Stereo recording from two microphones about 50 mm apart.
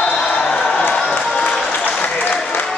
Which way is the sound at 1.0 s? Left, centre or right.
Left.